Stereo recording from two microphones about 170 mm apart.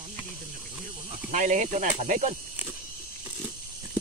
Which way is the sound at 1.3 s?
45° right (ahead or behind).